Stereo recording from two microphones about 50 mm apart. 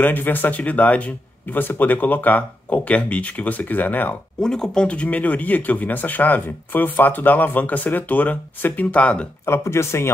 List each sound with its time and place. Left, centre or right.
0.0 s speech: left
1.6 s speech: left
4.4 s speech: centre
4.8 s speech: left
9.5 s speech: left